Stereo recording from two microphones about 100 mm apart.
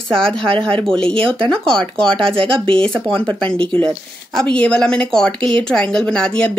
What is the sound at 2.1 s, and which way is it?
Speech, 60° right (ahead or behind).